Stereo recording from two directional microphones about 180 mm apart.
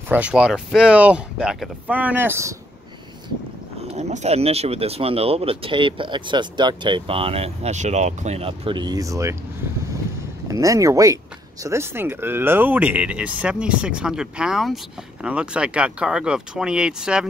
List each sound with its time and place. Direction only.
0.1 s speech: 5° right (ahead or behind)
3.8 s speech: 40° right (ahead or behind); by 9.4 s 15° right (ahead or behind)
10.5 s speech: 20° right (ahead or behind)